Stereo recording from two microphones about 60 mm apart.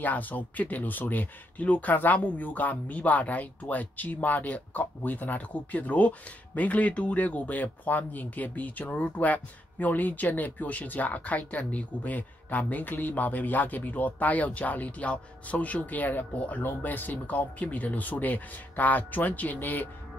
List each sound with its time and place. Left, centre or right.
0.0 s speech: left